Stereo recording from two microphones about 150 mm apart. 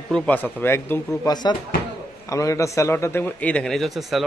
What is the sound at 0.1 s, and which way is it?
Speech, 10° left (ahead or behind).